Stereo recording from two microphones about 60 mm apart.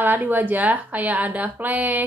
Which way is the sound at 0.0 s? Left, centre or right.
Right.